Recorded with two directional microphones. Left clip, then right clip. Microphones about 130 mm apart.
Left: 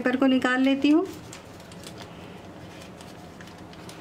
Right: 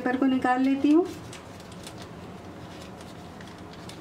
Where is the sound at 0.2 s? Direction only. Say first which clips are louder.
Left 1 dB; 35° left (ahead or behind).